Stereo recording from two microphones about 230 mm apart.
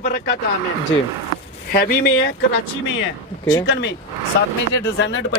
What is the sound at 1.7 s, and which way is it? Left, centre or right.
Speech, left.